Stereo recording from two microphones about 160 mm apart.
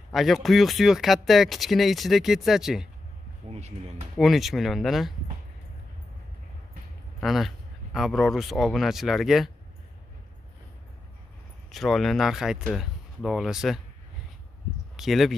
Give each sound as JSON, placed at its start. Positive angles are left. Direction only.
{"t": 0.1, "sound": "speech", "side_deg": 0}
{"t": 3.4, "sound": "speech", "side_deg": -40}
{"t": 4.2, "sound": "speech", "side_deg": 0}
{"t": 7.2, "sound": "speech", "side_deg": 0}
{"t": 11.7, "sound": "speech", "side_deg": 0}
{"t": 15.0, "sound": "speech", "side_deg": 0}